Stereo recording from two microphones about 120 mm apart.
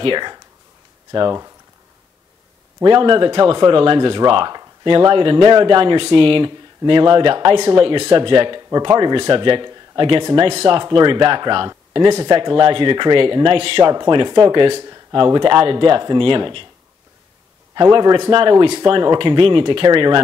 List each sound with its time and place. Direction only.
0.0 s speech: 40° right (ahead or behind)
2.8 s speech: 40° right (ahead or behind)
14.8 s a sound: 30° right (ahead or behind)
15.1 s speech: 40° right (ahead or behind)
17.9 s speech: 45° right (ahead or behind)